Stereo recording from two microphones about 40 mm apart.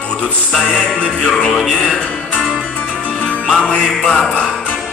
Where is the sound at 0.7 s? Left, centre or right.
Centre.